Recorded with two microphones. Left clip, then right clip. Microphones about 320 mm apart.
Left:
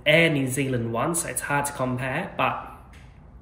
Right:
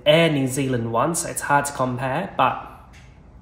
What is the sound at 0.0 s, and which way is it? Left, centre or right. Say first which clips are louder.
Speech: right 3 dB; centre.